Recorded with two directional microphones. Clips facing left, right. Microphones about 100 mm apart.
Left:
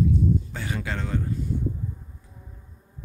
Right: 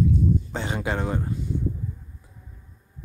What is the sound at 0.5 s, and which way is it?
Speech, 25° right (ahead or behind).